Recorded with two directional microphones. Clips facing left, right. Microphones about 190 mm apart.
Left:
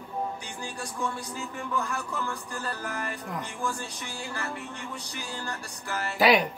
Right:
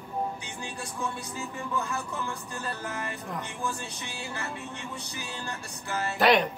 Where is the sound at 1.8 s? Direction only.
20° right (ahead or behind).